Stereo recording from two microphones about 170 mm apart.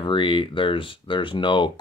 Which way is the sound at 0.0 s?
30° left (ahead or behind).